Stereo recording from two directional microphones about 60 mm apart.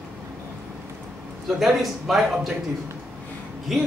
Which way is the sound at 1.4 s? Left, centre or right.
Centre.